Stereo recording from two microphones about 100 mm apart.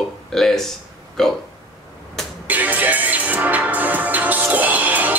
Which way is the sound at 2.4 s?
15° right (ahead or behind).